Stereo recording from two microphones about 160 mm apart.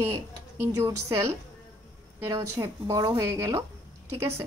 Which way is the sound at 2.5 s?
20° right (ahead or behind).